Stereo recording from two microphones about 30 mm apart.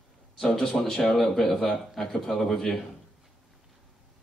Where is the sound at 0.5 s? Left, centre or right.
Left.